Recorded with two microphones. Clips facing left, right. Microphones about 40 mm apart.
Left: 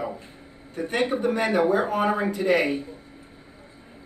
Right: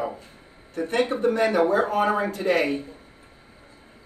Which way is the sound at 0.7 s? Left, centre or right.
Centre.